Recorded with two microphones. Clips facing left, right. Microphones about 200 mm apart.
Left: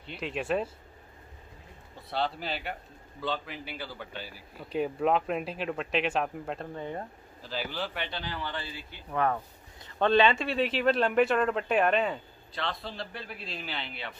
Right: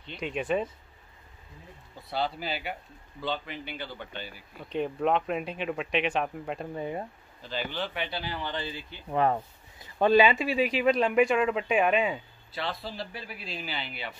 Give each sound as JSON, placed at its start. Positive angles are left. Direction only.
{"t": 0.0, "sound": "a man's voice", "side_deg": 5}
{"t": 2.0, "sound": "a man's voice", "side_deg": 0}
{"t": 7.4, "sound": "speech", "side_deg": 5}
{"t": 9.9, "sound": "a man's voice", "side_deg": -5}